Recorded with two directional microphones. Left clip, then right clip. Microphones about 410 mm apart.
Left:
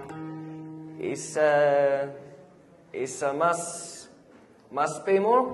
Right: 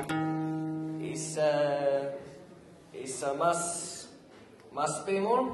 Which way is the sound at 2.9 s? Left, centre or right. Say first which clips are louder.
Left 5 dB; left.